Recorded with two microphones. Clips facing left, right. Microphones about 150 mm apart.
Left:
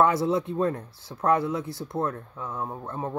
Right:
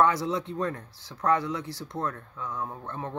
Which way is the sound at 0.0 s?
25° left (ahead or behind).